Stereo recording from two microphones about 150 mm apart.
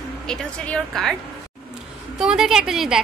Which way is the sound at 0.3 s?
5° left (ahead or behind).